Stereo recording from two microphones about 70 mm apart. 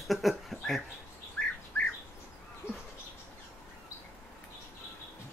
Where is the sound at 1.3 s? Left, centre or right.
Centre.